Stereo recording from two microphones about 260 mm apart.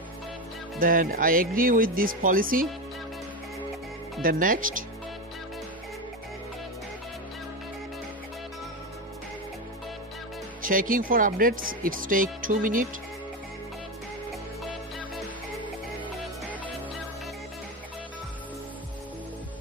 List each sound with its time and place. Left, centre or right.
0.7 s speech: right
4.2 s speech: right
10.6 s speech: right
14.6 s music: centre